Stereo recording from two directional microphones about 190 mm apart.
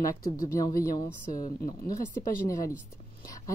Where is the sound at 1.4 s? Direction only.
50° left (ahead or behind).